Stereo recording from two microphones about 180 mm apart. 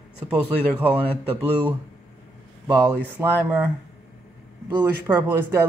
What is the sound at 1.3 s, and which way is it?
Speech, 10° right (ahead or behind).